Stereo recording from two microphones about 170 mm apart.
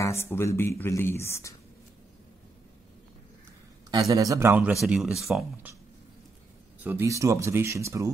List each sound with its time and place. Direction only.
0.0 s speech: 15° left (ahead or behind)
4.1 s speech: 20° right (ahead or behind); by 5.7 s centre (ahead or behind)
6.8 s speech: 15° right (ahead or behind)